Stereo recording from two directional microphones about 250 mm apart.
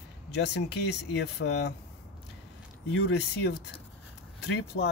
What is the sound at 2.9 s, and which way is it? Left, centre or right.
Speech, left.